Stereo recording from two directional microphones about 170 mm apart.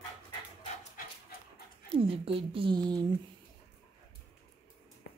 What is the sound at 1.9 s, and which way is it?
Speech, 35° right (ahead or behind).